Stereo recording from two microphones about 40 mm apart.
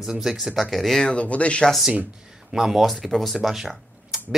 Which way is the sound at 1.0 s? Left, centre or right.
Left.